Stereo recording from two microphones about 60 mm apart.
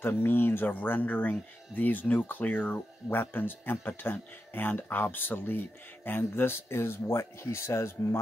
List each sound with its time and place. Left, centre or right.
0.0 s speech: left